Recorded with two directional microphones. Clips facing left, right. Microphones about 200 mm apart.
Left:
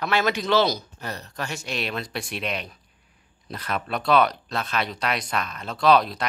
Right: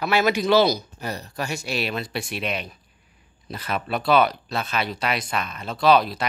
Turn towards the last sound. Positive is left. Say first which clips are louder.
# right 1 dB
turn(degrees=0)  # may be behind; listen again after turning